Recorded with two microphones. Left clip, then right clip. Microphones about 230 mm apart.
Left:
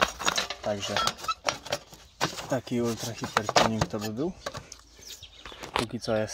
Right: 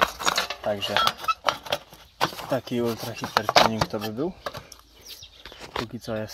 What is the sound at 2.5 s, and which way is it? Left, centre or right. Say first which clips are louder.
Speech: right 3 dB; right.